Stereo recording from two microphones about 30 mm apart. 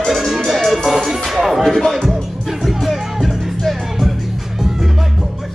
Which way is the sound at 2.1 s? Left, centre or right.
Centre.